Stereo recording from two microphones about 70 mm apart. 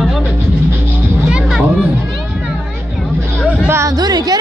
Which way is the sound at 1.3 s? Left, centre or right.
Centre.